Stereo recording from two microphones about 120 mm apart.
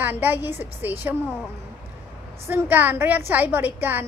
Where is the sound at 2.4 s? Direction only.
15° right (ahead or behind).